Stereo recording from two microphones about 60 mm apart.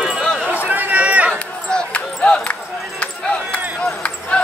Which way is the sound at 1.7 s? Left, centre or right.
Centre.